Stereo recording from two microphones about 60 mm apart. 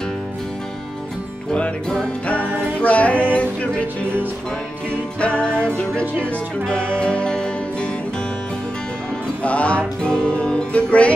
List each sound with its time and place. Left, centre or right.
1.5 s music: centre
5.2 s speech: centre
6.7 s music: centre
9.4 s music: left